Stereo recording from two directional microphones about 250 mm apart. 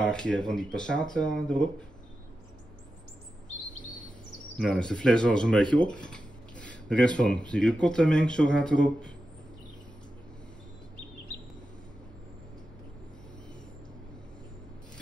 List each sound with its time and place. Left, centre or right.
0.0 s speech: centre
3.8 s bird vocalization: left
4.6 s speech: centre